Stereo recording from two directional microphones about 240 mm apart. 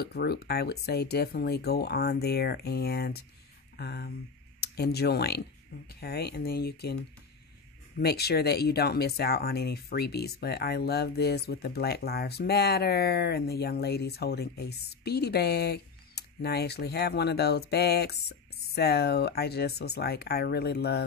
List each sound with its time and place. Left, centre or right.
0.0 s speech: left
8.0 s speech: left